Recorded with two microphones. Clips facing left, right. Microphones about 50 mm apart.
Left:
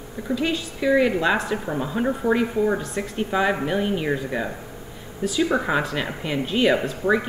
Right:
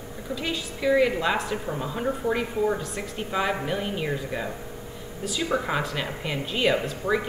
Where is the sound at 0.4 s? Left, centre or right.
Centre.